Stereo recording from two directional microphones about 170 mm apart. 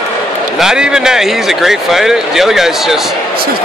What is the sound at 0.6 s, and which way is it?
Speech, 5° right (ahead or behind).